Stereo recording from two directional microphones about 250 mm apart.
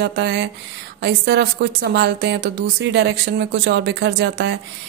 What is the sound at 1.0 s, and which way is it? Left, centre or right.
Speech, right.